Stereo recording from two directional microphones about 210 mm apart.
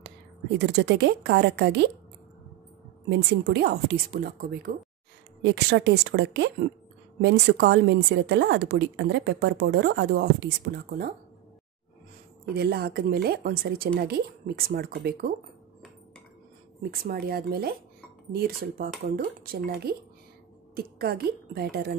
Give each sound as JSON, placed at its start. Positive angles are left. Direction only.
{"t": 0.6, "sound": "a woman's voice", "side_deg": -55}
{"t": 3.1, "sound": "a woman's voice", "side_deg": -55}
{"t": 12.5, "sound": "a woman's voice", "side_deg": -50}
{"t": 16.9, "sound": "a woman's voice", "side_deg": -45}